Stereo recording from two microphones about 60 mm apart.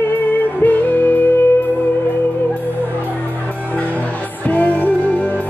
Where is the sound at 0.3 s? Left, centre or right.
Left.